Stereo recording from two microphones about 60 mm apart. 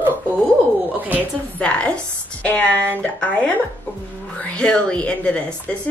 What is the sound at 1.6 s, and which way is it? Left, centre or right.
A woman's voice, centre.